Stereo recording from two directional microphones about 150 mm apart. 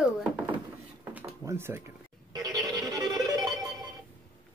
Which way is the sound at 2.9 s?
25° right (ahead or behind).